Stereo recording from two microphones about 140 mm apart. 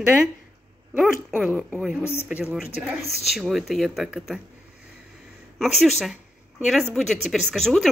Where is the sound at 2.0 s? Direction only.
15° left (ahead or behind).